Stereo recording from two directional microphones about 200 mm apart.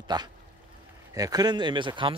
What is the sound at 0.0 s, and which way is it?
Speech, 20° right (ahead or behind).